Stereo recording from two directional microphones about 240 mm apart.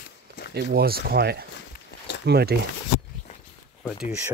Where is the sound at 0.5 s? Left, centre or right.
Right.